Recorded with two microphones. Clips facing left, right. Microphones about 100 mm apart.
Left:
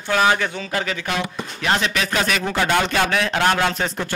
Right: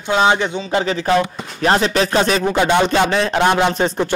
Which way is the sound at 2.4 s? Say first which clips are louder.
Right 5 dB; 20° right (ahead or behind).